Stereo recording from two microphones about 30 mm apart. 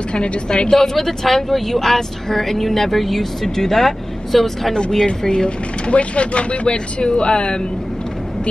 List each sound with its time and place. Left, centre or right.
0.1 s a woman's voice: left
0.5 s speech: left
0.7 s speech: centre
5.2 s speech: left
5.9 s speech: left